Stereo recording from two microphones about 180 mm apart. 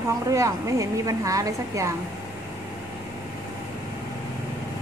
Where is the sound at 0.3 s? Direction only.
15° right (ahead or behind).